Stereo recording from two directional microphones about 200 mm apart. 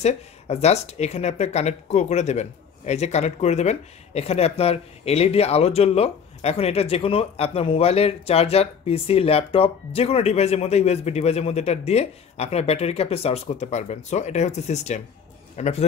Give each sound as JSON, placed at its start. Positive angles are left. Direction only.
{"t": 0.0, "sound": "a man's voice", "side_deg": 30}